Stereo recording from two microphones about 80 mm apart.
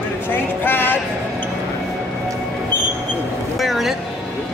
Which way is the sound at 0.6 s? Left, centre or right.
Left.